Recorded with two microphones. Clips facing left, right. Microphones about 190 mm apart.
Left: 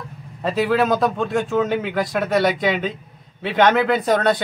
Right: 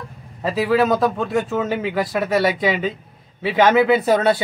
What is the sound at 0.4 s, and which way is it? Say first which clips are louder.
Speech: right 1 dB; centre (ahead or behind).